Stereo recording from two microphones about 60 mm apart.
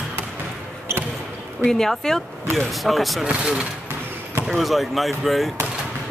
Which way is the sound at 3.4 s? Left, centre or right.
Centre.